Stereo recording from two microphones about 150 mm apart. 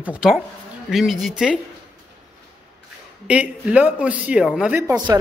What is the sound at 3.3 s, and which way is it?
Speech, 10° right (ahead or behind).